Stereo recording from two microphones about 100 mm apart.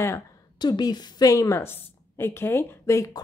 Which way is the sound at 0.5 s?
45° left (ahead or behind).